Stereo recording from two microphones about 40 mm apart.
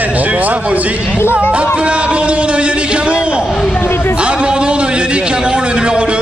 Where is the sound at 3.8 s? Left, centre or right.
Left.